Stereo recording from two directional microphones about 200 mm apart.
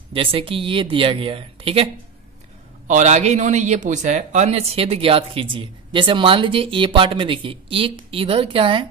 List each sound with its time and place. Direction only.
0.1 s a man's voice: 25° right (ahead or behind)
2.9 s a man's voice: 35° right (ahead or behind)